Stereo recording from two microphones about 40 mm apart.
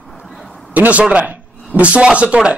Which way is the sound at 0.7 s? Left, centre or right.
Right.